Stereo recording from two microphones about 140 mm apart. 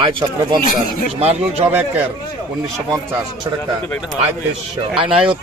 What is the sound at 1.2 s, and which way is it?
Speech, 50° right (ahead or behind).